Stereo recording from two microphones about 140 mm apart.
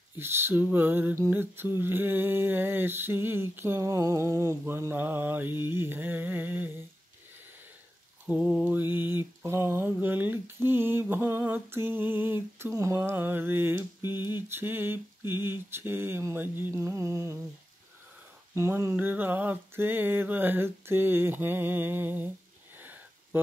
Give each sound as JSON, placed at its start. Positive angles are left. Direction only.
{"t": 0.2, "sound": "mantra", "side_deg": -15}
{"t": 8.3, "sound": "mantra", "side_deg": -5}
{"t": 18.5, "sound": "mantra", "side_deg": -20}
{"t": 22.8, "sound": "a sound", "side_deg": -15}